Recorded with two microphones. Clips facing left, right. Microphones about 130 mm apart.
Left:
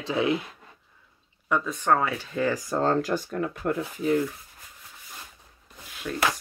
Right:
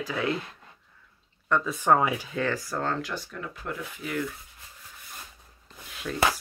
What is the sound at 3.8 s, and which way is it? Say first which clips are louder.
Speech: left 8 dB; 30° left (ahead or behind).